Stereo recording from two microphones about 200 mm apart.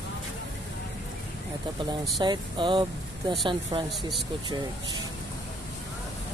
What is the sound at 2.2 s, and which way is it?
Speech, 25° right (ahead or behind).